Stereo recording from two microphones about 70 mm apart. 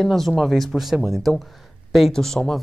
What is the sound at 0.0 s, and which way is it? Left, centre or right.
Speech, centre.